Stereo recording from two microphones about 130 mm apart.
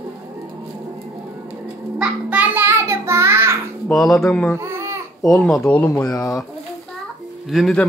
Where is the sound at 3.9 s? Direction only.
Centre (ahead or behind).